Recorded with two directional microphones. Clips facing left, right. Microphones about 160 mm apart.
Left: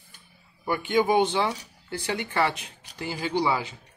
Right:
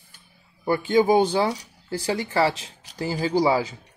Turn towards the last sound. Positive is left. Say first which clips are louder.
# right 5 dB
turn(degrees=-40)  # may be behind; listen again after turning